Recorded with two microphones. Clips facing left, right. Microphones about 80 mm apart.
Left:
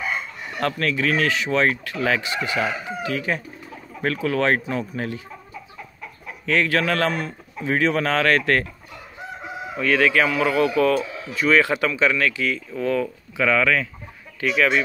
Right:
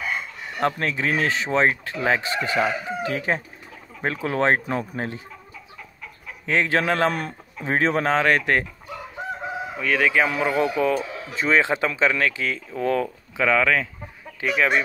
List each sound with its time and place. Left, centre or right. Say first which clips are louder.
0.6 s chicken: even; right
4.0 s speech: left 1 dB; right
6.4 s chicken: left 1 dB; right
7.1 s speech: even; right
7.6 s chicken: even; right; by 8.6 s centre
9.8 s speech: left 2 dB; centre
10.2 s chicken: left 2 dB; right